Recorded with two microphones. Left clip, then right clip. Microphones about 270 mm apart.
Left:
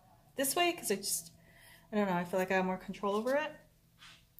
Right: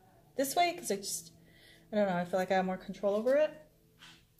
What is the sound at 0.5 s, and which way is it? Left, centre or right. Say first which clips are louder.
A woman's voice: right 1 dB; left.